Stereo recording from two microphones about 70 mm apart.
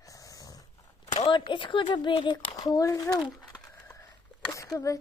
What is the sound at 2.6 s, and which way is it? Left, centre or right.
Speech, left.